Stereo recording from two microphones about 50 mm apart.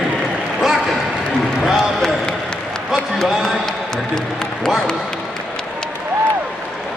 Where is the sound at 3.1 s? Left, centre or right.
Centre.